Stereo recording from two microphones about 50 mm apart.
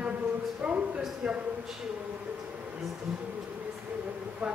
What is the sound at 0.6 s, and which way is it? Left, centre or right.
Speech, right.